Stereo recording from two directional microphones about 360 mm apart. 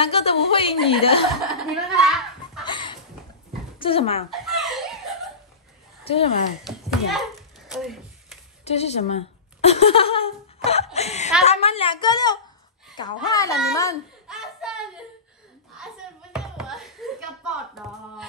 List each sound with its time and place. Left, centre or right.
0.0 s a woman's voice: centre
1.5 s speech: centre
2.6 s chicken: centre
3.8 s a woman's voice: centre
4.3 s laughter: centre
6.1 s a woman's voice: centre
6.6 s a sound: centre
8.6 s a woman's voice: centre
14.2 s a sound: centre
16.3 s a sound: centre